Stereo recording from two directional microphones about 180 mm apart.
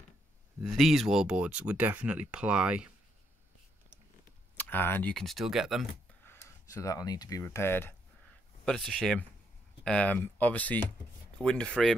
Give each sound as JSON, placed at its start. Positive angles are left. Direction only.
{"t": 0.6, "sound": "speech", "side_deg": 0}
{"t": 4.6, "sound": "speech", "side_deg": 10}
{"t": 6.2, "sound": "speech", "side_deg": 15}
{"t": 8.6, "sound": "speech", "side_deg": 0}